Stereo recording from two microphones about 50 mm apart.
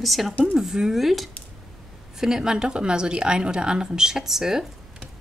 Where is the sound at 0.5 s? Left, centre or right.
Centre.